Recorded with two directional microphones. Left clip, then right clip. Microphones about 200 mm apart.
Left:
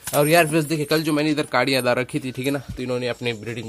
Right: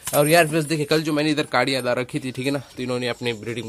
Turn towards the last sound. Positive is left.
turn(degrees=-5)  # may be behind; listen again after turning